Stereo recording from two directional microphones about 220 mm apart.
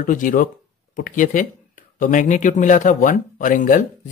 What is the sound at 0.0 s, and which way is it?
Speech, 35° left (ahead or behind).